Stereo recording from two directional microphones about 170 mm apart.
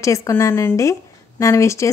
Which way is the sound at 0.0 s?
20° left (ahead or behind).